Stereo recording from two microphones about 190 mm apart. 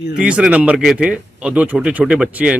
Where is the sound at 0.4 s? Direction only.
5° right (ahead or behind).